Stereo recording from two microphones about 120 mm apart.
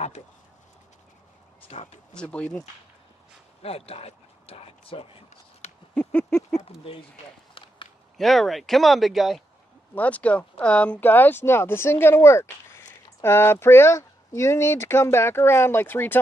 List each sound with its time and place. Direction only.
1.7 s speech: 65° left (ahead or behind)
2.1 s speech: 10° left (ahead or behind)
3.6 s speech: 55° left (ahead or behind)
5.9 s a sound: 10° left (ahead or behind)
6.6 s speech: 50° left (ahead or behind)
7.5 s walk: 45° left (ahead or behind)
8.2 s speech: centre (ahead or behind)
9.9 s speech: 10° left (ahead or behind)